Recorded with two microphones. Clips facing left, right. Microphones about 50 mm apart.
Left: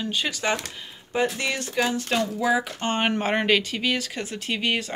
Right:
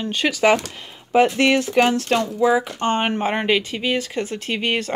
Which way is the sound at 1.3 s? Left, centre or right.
Right.